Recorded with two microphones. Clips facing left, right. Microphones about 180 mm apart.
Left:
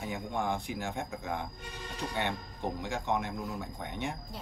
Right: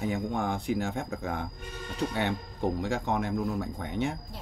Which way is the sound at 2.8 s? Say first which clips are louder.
Right 4 dB; 50° right (ahead or behind).